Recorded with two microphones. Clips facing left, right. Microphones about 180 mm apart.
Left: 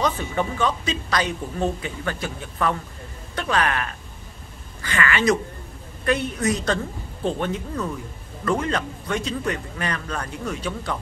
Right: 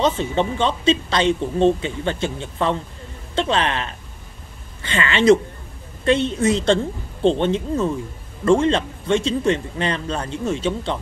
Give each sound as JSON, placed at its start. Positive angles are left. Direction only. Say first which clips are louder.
{"t": 0.0, "sound": "speech", "louder": "right 4 dB", "side_deg": -25}